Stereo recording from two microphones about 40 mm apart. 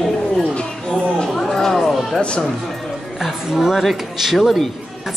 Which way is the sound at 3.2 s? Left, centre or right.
Centre.